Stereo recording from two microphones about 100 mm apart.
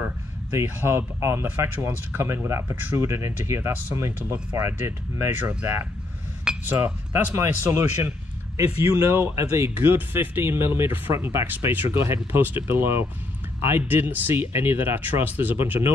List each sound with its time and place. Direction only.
0.7 s speech: 25° right (ahead or behind)
5.4 s speech: 15° right (ahead or behind)